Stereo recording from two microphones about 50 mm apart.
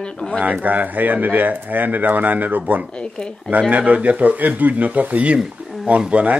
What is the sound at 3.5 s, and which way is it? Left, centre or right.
Speech, right.